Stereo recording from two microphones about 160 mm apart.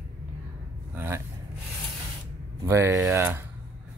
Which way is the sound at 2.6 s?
15° right (ahead or behind).